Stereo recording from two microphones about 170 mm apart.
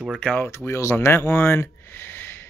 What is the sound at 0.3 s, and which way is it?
Speech, 10° left (ahead or behind).